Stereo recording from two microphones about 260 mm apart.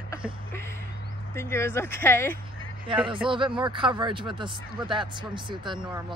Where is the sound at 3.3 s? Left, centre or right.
Centre.